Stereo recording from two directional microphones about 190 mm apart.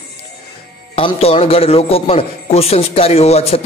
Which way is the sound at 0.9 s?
30° left (ahead or behind).